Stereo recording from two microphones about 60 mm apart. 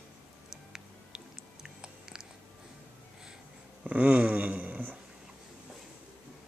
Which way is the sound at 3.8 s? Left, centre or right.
Right.